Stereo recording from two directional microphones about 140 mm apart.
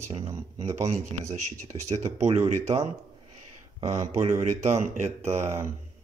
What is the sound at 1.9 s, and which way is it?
Speech, 55° right (ahead or behind).